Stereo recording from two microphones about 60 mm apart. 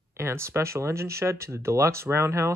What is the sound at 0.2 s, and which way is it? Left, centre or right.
Speech, right.